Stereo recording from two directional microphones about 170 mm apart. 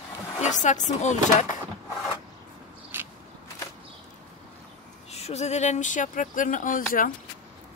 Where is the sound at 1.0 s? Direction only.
45° left (ahead or behind).